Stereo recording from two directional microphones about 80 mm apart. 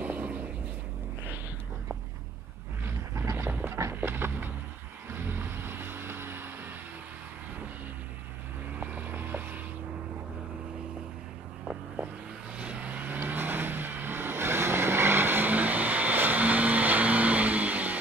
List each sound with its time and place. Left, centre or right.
0.0 s a sound: right
2.8 s dog: right
3.9 s a sound: right
5.1 s vehicle: right
8.7 s vehicle: right
12.5 s vehicle: centre